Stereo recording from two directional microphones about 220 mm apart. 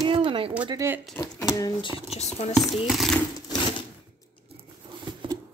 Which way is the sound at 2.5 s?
Centre (ahead or behind).